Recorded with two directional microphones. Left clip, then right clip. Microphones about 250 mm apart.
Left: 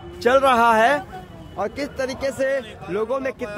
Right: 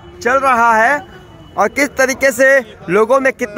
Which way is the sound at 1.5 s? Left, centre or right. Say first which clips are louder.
Right 12 dB; right.